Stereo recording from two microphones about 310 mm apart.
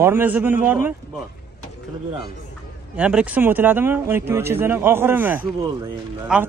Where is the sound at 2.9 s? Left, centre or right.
Centre.